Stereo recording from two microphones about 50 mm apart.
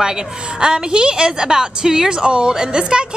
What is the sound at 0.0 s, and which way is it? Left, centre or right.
Speech, centre.